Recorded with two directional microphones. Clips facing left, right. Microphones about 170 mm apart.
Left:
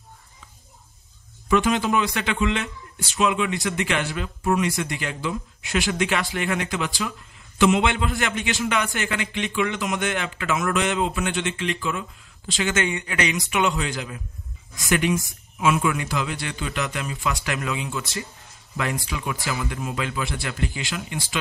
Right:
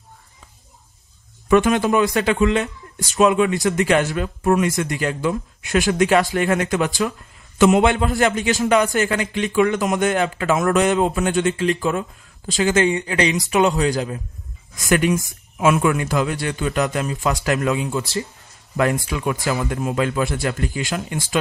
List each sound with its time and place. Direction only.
1.5 s a man's voice: 50° right (ahead or behind)
19.0 s a man's voice: 45° right (ahead or behind)